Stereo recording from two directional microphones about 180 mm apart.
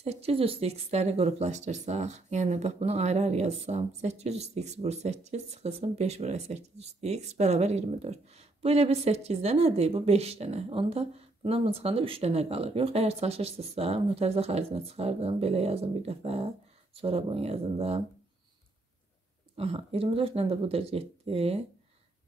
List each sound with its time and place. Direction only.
0.0 s speech: 35° right (ahead or behind)
19.5 s speech: 35° right (ahead or behind)